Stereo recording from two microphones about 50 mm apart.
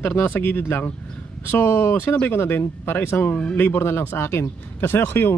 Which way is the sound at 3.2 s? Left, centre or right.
Left.